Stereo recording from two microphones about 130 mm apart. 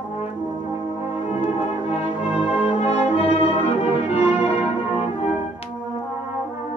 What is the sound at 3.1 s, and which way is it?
Music, 50° left (ahead or behind).